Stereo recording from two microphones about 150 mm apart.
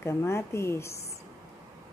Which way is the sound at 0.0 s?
15° left (ahead or behind).